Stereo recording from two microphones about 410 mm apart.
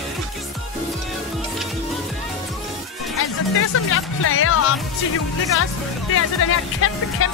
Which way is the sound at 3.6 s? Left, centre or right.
Left.